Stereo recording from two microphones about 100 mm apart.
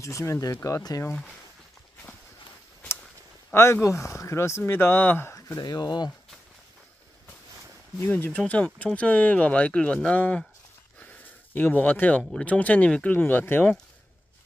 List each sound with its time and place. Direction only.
0.0 s speech: 30° left (ahead or behind)
3.5 s speech: 25° left (ahead or behind)
5.6 s speech: 45° left (ahead or behind)
8.0 s speech: 20° left (ahead or behind)
11.0 s a sound: 15° left (ahead or behind)
12.4 s speech: 15° left (ahead or behind)